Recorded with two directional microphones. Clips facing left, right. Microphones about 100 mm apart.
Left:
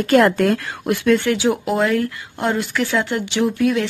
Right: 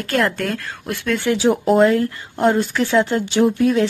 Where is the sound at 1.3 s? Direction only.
20° right (ahead or behind).